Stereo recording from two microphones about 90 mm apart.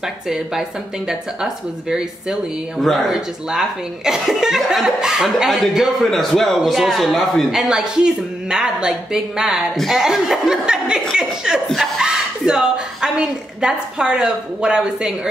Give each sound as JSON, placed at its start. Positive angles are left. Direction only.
{"t": 0.3, "sound": "speech", "side_deg": -5}
{"t": 9.8, "sound": "chuckle", "side_deg": -5}
{"t": 12.0, "sound": "a woman's voice", "side_deg": -10}